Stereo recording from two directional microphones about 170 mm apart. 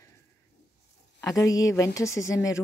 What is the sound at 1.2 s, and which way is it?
A woman's voice, 20° left (ahead or behind).